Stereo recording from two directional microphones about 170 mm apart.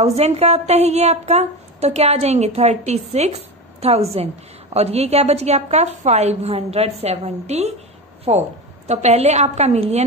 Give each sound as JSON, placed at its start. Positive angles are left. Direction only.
{"t": 0.0, "sound": "a woman's voice", "side_deg": -40}